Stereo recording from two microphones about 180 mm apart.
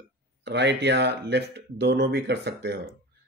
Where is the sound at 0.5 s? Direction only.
70° right (ahead or behind).